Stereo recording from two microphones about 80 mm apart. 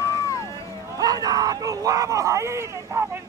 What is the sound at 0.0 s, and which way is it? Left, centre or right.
Vehicle, left.